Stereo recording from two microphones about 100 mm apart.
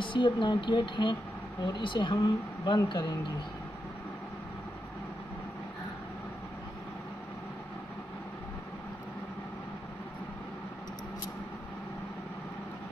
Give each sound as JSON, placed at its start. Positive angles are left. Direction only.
{"t": 0.0, "sound": "speech", "side_deg": 55}